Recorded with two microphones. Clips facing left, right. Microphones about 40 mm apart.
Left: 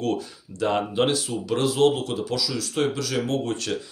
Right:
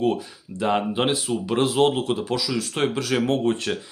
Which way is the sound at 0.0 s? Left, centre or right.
Centre.